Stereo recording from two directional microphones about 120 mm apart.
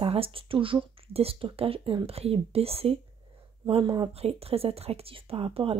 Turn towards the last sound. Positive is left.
turn(degrees=-50)  # may be behind; listen again after turning